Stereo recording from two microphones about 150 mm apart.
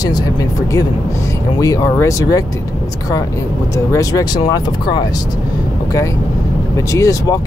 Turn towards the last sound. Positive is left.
turn(degrees=20)  # may be behind; listen again after turning